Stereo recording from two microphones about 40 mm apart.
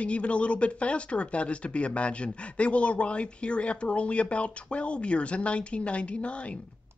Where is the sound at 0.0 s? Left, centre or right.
Left.